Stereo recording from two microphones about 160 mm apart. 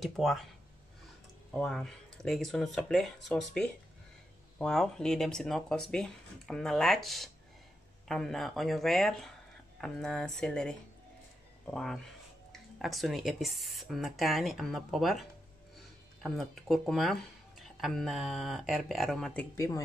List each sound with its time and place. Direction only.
0.0 s speech: centre (ahead or behind)
1.5 s speech: centre (ahead or behind)
19.5 s speech: 20° left (ahead or behind)